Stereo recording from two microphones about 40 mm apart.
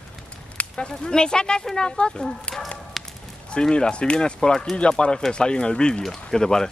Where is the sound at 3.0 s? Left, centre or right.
Centre.